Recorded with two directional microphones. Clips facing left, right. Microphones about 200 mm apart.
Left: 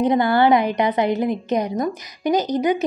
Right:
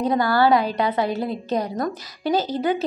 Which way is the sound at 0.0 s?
20° left (ahead or behind).